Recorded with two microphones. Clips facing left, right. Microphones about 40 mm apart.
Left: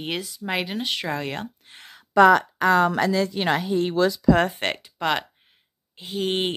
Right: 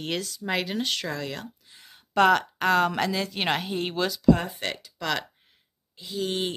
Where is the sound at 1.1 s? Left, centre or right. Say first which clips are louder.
Left 4 dB; left.